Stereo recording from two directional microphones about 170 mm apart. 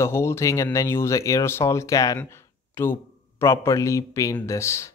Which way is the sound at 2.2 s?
15° left (ahead or behind).